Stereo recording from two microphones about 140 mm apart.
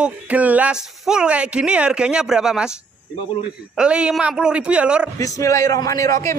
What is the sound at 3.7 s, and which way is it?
Speech, 5° right (ahead or behind).